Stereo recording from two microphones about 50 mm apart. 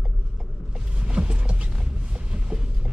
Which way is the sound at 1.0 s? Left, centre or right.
Right.